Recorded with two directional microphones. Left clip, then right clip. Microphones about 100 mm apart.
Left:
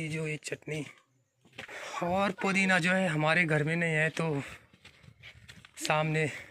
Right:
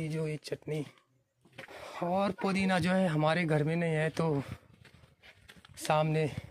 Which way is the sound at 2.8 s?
30° right (ahead or behind).